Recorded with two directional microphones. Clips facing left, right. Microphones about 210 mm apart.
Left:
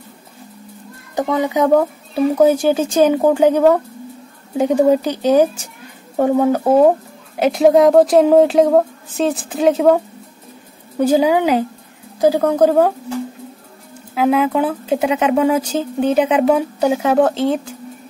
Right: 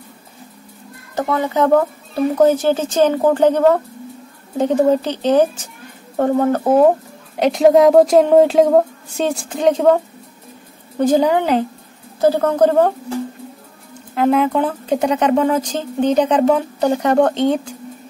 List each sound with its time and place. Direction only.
1.1 s speech: 15° left (ahead or behind)
11.0 s speech: 10° left (ahead or behind)
14.1 s speech: 5° left (ahead or behind)